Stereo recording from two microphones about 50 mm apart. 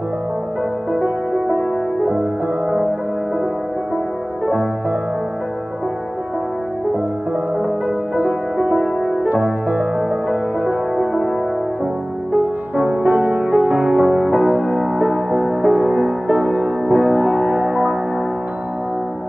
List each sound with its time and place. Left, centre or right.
0.9 s music: right
8.2 s music: centre
12.4 s music: right